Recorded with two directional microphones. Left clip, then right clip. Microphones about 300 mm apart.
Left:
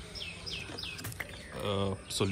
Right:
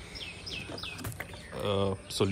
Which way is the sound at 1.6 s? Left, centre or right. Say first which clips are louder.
Right 4 dB; centre.